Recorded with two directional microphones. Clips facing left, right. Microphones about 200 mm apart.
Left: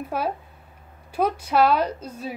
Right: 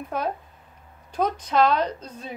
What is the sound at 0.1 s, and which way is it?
Speech, 5° left (ahead or behind).